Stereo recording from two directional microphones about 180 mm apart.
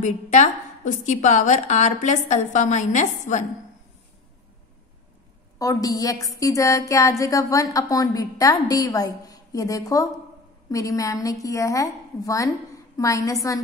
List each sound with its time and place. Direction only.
0.0 s a woman's voice: 40° left (ahead or behind)
5.6 s a woman's voice: 20° left (ahead or behind)